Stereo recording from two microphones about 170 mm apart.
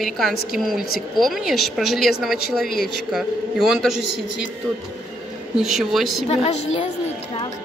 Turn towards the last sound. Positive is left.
turn(degrees=40)  # may be behind; listen again after turning